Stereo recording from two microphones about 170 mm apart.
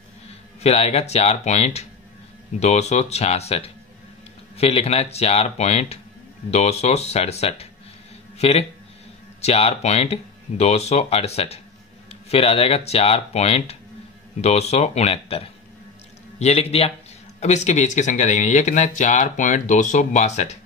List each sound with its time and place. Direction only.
0.6 s speech: 40° left (ahead or behind)